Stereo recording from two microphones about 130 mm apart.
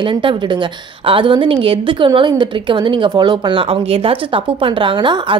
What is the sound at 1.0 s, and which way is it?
A woman's voice, 40° right (ahead or behind).